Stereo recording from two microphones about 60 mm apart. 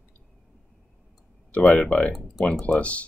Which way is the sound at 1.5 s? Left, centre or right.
Left.